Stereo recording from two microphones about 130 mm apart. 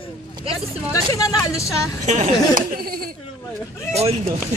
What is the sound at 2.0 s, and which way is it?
Speech, 65° right (ahead or behind).